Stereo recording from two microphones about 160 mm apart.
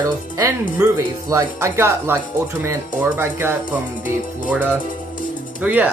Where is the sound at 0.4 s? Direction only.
15° right (ahead or behind).